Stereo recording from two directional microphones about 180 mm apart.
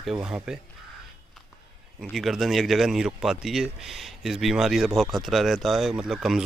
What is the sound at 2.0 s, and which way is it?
Speech, centre (ahead or behind).